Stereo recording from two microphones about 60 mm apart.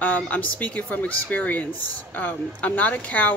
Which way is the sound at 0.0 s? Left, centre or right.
Left.